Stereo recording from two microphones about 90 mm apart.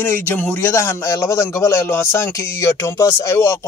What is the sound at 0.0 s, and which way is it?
Speech, 20° left (ahead or behind).